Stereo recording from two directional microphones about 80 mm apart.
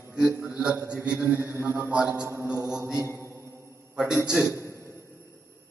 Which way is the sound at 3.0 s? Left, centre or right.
Right.